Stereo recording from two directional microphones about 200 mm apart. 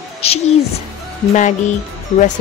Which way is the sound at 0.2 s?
30° left (ahead or behind).